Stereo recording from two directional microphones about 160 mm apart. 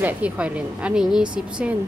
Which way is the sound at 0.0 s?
10° right (ahead or behind).